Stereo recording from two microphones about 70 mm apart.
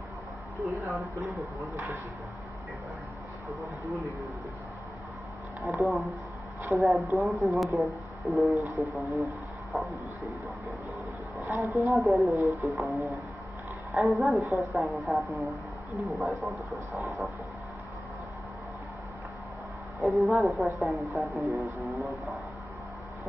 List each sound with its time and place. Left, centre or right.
0.6 s speech: right
5.7 s a woman's voice: centre
11.7 s speech: right
12.0 s a woman's voice: centre
20.0 s a woman's voice: centre